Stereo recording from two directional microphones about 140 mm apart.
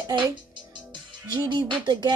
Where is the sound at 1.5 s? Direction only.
35° right (ahead or behind).